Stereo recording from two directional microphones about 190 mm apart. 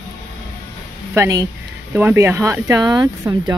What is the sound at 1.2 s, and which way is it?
A woman's voice, 20° right (ahead or behind).